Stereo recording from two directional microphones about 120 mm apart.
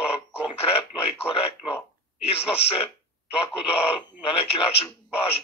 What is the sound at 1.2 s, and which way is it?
Speech, 55° left (ahead or behind).